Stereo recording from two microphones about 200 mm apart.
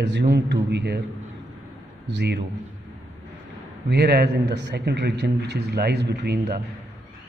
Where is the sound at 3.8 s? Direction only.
55° right (ahead or behind).